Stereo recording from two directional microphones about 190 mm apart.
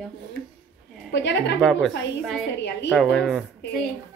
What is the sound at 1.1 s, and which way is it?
Speech, 70° left (ahead or behind).